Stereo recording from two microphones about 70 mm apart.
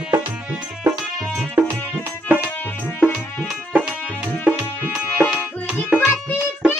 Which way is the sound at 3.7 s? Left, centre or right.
Centre.